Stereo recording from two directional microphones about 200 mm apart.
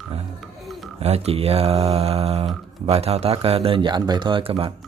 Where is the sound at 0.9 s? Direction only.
30° right (ahead or behind).